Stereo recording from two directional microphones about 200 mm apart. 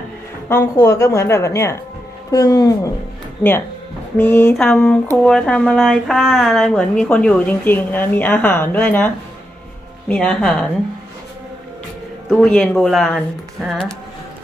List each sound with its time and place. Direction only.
0.5 s a woman's voice: 10° left (ahead or behind)
4.2 s a woman's voice: 10° left (ahead or behind)
12.3 s speech: 5° left (ahead or behind)